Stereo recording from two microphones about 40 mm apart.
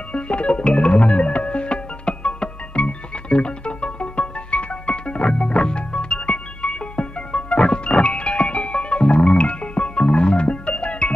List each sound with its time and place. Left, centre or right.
0.1 s music: left